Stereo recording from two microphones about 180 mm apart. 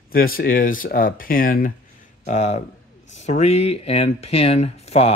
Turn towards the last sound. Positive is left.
turn(degrees=35)  # may be behind; listen again after turning